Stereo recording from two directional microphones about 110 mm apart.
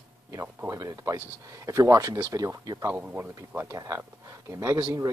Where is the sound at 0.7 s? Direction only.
30° right (ahead or behind).